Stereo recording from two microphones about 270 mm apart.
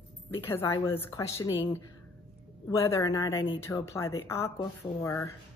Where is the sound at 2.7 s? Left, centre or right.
Centre.